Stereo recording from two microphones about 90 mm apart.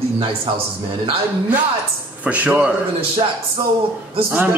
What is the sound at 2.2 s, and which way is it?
Speech, 15° right (ahead or behind).